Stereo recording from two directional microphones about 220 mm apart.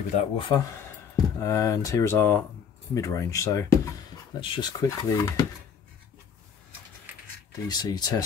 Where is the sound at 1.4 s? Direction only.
15° left (ahead or behind).